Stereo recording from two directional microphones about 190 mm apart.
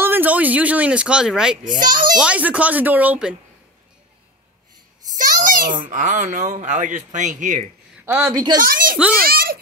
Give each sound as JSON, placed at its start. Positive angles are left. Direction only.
{"t": 0.0, "sound": "speech", "side_deg": -10}
{"t": 1.6, "sound": "a child's voice", "side_deg": -45}
{"t": 2.1, "sound": "speech", "side_deg": -5}
{"t": 5.1, "sound": "a child's voice", "side_deg": -45}
{"t": 8.0, "sound": "a woman's voice", "side_deg": -5}
{"t": 8.5, "sound": "a child's voice", "side_deg": -45}